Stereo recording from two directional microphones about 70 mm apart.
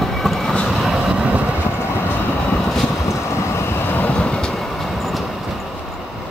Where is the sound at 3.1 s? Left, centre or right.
Left; by 5.3 s centre.